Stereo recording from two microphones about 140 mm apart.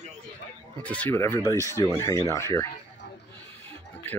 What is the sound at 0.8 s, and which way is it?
Speech, 10° left (ahead or behind).